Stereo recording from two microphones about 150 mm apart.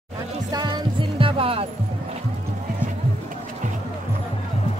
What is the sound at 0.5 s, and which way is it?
Music, 25° right (ahead or behind).